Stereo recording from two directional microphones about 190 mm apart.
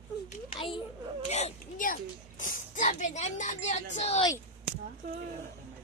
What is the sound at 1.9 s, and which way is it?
A child's voice, 45° left (ahead or behind).